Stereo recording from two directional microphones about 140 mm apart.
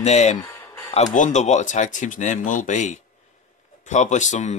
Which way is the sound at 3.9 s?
60° left (ahead or behind).